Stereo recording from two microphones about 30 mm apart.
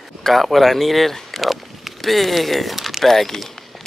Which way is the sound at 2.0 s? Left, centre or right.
Centre.